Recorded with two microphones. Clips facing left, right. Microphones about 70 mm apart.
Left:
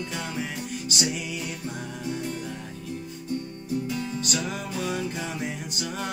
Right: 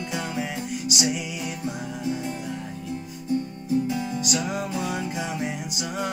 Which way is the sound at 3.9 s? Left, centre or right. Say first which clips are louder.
Right 3 dB; centre.